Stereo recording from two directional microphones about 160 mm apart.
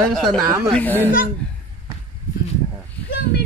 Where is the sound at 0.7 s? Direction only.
10° left (ahead or behind).